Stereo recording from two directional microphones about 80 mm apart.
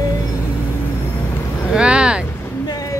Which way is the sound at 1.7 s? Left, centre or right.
Centre.